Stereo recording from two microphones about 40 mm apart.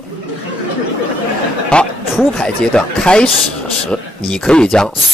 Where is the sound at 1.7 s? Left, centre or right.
Left.